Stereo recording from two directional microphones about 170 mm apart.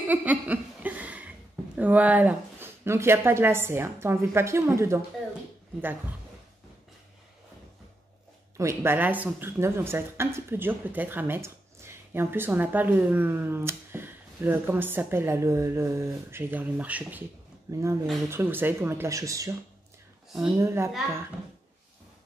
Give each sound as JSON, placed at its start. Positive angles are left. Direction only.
{"t": 0.1, "sound": "a sound", "side_deg": -10}
{"t": 1.8, "sound": "speech", "side_deg": -10}
{"t": 8.5, "sound": "speech", "side_deg": -15}
{"t": 20.5, "sound": "speech", "side_deg": -15}